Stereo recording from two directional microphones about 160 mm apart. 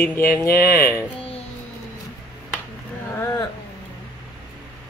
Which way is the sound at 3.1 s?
20° left (ahead or behind).